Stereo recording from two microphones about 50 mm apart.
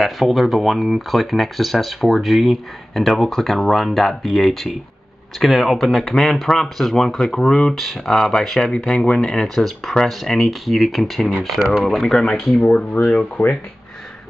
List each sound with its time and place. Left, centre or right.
0.0 s speech: centre
7.8 s speech: centre
9.0 s speech: centre
9.3 s speech: centre
12.5 s speech: centre
13.1 s speech: left